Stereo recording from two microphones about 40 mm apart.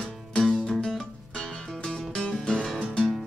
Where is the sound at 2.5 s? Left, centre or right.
Centre.